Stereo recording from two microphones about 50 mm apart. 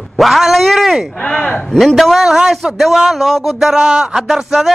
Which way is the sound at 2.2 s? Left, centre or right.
Centre.